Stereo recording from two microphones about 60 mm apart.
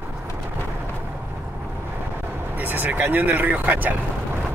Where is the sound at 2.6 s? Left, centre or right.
Right.